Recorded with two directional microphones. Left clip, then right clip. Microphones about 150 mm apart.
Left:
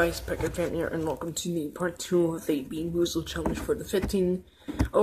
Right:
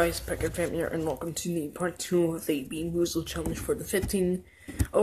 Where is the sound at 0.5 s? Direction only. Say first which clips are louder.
Even; 5° right (ahead or behind).